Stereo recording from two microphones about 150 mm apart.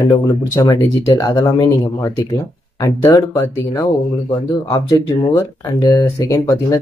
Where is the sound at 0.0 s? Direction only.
25° left (ahead or behind).